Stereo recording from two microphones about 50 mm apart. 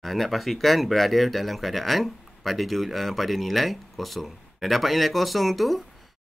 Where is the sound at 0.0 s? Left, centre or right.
Centre.